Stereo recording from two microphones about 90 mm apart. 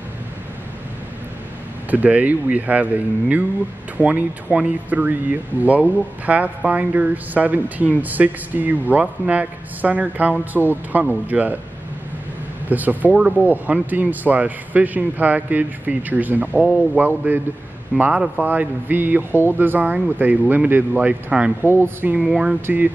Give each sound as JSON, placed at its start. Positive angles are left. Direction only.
{"t": 1.9, "sound": "speech", "side_deg": -15}
{"t": 12.6, "sound": "speech", "side_deg": -20}
{"t": 22.2, "sound": "speech", "side_deg": -5}